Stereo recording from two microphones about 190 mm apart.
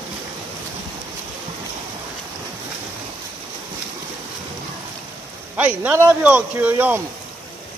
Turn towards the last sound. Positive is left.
turn(degrees=-10)  # may be behind; listen again after turning